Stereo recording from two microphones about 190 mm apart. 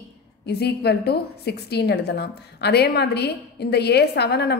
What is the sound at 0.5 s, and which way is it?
A woman's voice, 60° left (ahead or behind).